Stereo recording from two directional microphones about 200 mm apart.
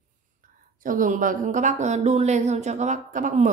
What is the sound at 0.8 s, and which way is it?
A woman's voice, 40° right (ahead or behind).